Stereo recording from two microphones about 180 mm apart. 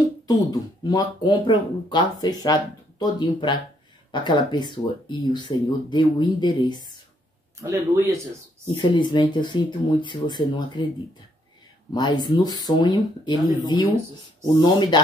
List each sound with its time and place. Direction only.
0.3 s speech: 20° left (ahead or behind)
7.5 s speech: 15° right (ahead or behind)
8.9 s speech: 25° left (ahead or behind)
11.9 s speech: 25° left (ahead or behind)
14.4 s speech: 25° left (ahead or behind)